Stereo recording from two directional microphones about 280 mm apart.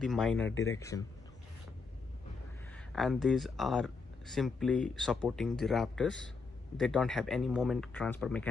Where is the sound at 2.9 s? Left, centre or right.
Centre.